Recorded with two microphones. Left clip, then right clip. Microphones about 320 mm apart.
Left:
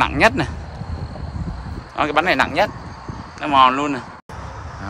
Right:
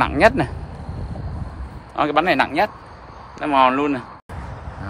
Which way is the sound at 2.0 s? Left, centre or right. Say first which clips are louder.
Even; centre.